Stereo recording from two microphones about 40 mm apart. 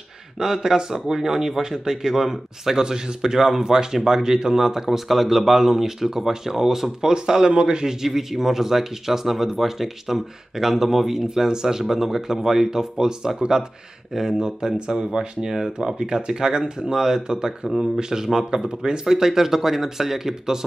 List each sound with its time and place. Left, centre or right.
0.4 s speech: centre